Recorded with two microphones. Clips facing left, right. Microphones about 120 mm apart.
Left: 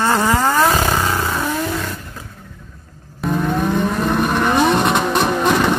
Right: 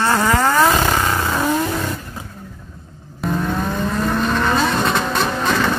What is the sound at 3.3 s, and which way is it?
Vehicle, 20° left (ahead or behind).